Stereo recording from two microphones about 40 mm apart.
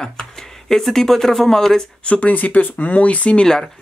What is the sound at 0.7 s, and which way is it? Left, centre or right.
Speech, centre.